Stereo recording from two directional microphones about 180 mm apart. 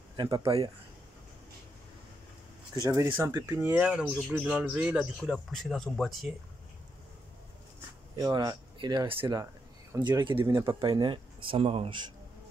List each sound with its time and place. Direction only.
0.1 s speech: 20° right (ahead or behind)
2.7 s speech: 20° right (ahead or behind); by 6.3 s centre (ahead or behind)
8.2 s speech: 20° right (ahead or behind)